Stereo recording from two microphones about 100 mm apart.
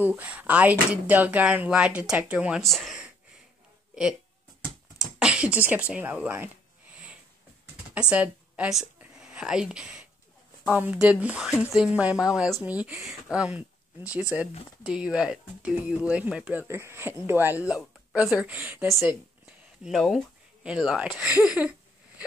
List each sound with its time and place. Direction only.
0.0 s speech: 15° right (ahead or behind)
2.6 s speech: centre (ahead or behind)
3.9 s a sound: 5° right (ahead or behind)
4.9 s speech: 10° right (ahead or behind)
7.9 s a woman's voice: 10° right (ahead or behind)
9.1 s whispering: 10° right (ahead or behind)
10.6 s speech: 15° right (ahead or behind)
16.6 s speech: 25° right (ahead or behind)
17.6 s speech: 10° right (ahead or behind)
19.8 s speech: centre (ahead or behind)